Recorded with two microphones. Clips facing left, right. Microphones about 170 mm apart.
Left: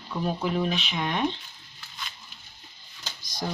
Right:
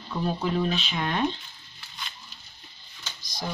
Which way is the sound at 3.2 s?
55° left (ahead or behind).